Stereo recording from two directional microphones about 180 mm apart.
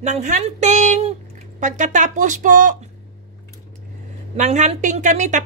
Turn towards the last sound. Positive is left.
turn(degrees=-40)  # may be behind; listen again after turning